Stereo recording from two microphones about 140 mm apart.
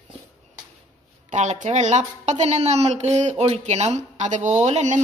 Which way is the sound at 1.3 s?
60° right (ahead or behind).